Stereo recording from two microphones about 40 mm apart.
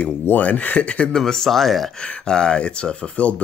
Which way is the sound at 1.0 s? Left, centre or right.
Centre.